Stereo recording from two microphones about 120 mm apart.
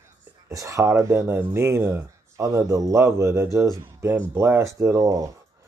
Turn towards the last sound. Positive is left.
turn(degrees=-30)  # may be behind; listen again after turning